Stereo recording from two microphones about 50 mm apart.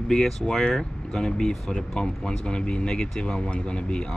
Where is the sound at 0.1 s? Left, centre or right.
Centre.